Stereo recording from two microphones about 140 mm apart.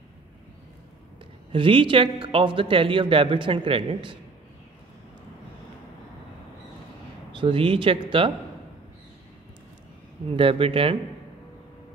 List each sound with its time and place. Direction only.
1.5 s speech: 40° right (ahead or behind)
7.3 s speech: 40° right (ahead or behind)
10.3 s speech: 40° right (ahead or behind)